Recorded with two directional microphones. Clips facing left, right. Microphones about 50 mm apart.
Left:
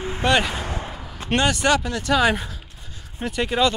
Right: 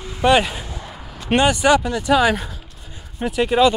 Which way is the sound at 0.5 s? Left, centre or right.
Left.